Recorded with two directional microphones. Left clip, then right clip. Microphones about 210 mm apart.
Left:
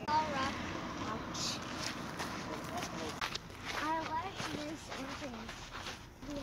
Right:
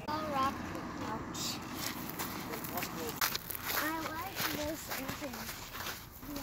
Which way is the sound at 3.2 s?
55° right (ahead or behind).